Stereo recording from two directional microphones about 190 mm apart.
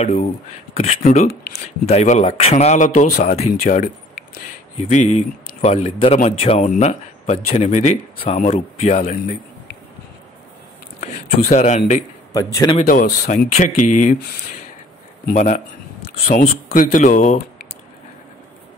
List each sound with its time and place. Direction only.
0.0 s speech: 35° left (ahead or behind)
11.0 s speech: 40° left (ahead or behind)
12.3 s speech: 15° left (ahead or behind)
12.8 s speech: 45° left (ahead or behind)
15.2 s speech: 40° left (ahead or behind)